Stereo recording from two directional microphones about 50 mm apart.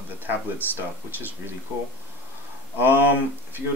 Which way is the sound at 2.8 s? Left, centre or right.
Right.